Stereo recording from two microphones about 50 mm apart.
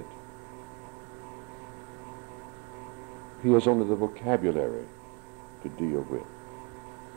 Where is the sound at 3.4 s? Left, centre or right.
Centre.